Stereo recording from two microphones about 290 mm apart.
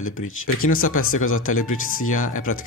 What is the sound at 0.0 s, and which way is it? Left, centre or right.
Speech, left.